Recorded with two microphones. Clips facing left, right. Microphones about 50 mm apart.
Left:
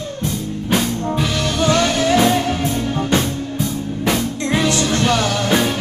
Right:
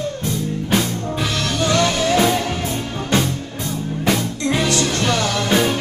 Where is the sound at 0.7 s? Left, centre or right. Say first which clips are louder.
Left 3 dB; centre.